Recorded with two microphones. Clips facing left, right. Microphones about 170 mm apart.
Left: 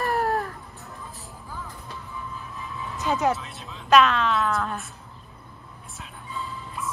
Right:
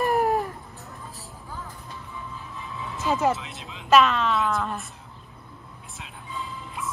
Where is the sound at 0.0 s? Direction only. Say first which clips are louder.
Right 2 dB; 15° right (ahead or behind).